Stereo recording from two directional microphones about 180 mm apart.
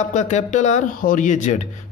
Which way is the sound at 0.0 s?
40° left (ahead or behind).